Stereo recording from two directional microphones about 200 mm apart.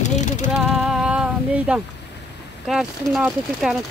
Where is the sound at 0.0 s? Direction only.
35° left (ahead or behind).